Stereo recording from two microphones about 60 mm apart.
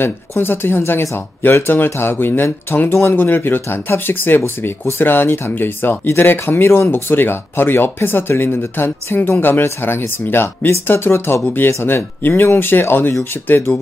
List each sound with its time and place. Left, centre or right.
0.0 s speech: left